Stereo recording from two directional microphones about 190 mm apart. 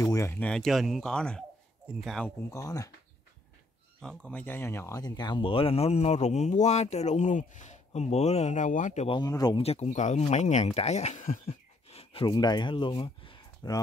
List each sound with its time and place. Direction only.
0.0 s speech: 15° left (ahead or behind)
2.5 s speech: 15° left (ahead or behind)
4.0 s speech: 5° left (ahead or behind); by 9.6 s 20° left (ahead or behind)
9.6 s speech: 30° left (ahead or behind)